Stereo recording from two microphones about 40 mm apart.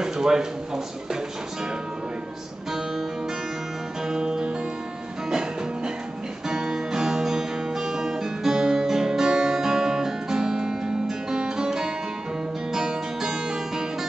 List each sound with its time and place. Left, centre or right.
0.0 s a sound: centre
4.1 s music: centre
6.5 s music: centre